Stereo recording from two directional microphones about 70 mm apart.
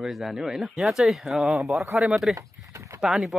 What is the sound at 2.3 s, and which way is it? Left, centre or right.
Speech, right.